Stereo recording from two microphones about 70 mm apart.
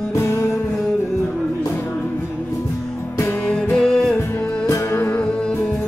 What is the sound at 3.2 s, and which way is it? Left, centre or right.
Music, left.